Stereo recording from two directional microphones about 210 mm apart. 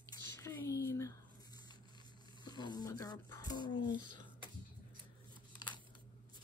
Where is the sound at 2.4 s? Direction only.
20° left (ahead or behind).